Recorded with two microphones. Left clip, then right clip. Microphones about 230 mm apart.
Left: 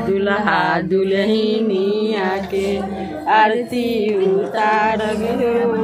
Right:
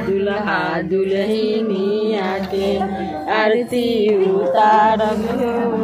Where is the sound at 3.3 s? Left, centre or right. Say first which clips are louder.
Left 3 dB; left.